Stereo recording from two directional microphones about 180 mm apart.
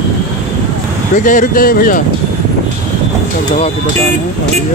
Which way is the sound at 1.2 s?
45° left (ahead or behind).